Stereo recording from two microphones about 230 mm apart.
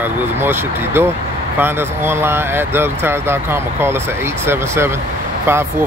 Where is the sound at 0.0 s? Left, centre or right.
Centre.